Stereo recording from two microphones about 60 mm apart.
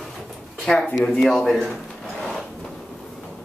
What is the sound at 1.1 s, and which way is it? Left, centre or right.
Speech, centre.